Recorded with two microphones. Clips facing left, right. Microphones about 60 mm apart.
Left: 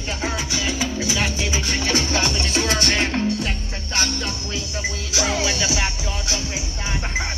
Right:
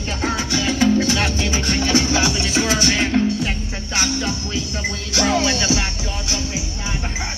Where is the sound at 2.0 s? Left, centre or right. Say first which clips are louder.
Right 3 dB; centre.